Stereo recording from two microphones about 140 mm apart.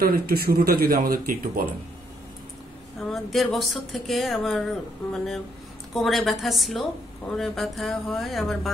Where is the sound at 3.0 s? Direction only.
Centre (ahead or behind).